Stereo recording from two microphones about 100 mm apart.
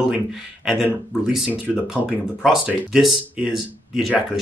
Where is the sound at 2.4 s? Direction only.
5° right (ahead or behind).